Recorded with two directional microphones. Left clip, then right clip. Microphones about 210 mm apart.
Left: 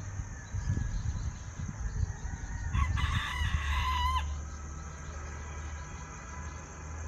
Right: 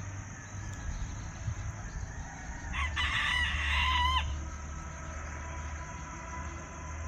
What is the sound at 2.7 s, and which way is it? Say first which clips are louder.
Chicken: right 5 dB; 30° left (ahead or behind).